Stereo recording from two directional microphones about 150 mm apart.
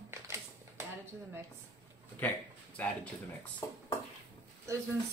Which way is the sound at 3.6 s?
25° left (ahead or behind).